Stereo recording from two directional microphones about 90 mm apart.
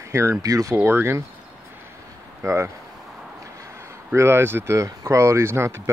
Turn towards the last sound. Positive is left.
turn(degrees=-30)  # may be behind; listen again after turning